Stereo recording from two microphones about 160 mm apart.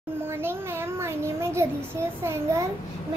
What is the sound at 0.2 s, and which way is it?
A child's voice, 15° right (ahead or behind).